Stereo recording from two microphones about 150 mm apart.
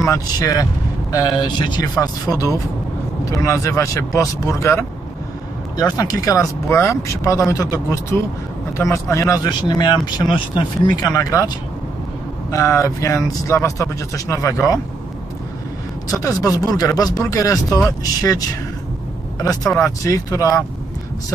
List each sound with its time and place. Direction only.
0.0 s speech: 20° left (ahead or behind)
16.1 s speech: 25° left (ahead or behind)
19.8 s speech: 20° left (ahead or behind)